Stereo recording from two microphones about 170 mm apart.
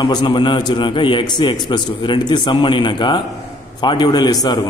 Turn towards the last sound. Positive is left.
turn(degrees=25)  # may be behind; listen again after turning